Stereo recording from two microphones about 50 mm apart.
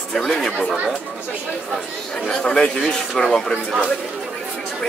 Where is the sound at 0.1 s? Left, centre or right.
Centre.